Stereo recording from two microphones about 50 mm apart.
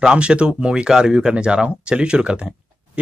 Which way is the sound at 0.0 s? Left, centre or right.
Centre.